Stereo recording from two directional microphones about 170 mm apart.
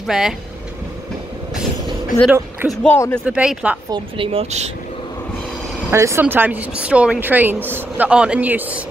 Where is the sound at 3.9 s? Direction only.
30° right (ahead or behind).